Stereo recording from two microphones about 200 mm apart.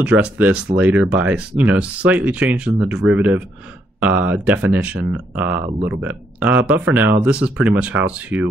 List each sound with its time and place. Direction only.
0.0 s speech: 5° right (ahead or behind)